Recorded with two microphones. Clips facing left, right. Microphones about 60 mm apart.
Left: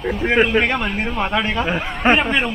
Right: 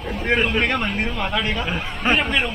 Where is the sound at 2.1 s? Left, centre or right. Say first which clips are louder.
Left 3 dB; centre.